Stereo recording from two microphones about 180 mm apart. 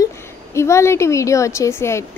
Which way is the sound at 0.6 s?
15° left (ahead or behind).